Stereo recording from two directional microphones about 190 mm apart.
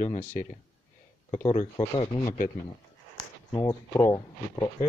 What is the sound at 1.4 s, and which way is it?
Speech, 40° left (ahead or behind).